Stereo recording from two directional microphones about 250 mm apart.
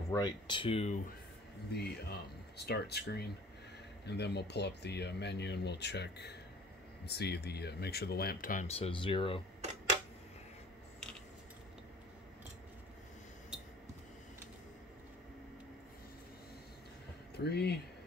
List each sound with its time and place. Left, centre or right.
0.1 s speech: centre
1.7 s speech: left
13.5 s a sound: centre
17.4 s speech: left